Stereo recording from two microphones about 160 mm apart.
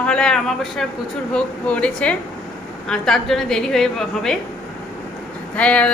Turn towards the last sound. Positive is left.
turn(degrees=10)  # may be behind; listen again after turning